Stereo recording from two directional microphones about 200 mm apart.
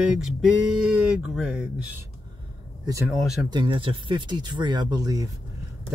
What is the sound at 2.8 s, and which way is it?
Speech, 15° right (ahead or behind).